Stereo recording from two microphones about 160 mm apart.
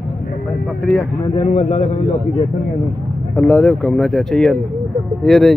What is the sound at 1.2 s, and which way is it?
Speech, 25° left (ahead or behind).